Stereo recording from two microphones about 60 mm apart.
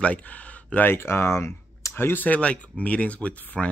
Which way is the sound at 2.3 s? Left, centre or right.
Left.